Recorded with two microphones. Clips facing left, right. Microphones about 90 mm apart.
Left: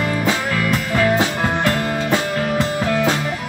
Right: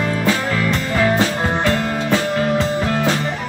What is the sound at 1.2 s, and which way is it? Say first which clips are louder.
Music: right 1 dB; 15° left (ahead or behind).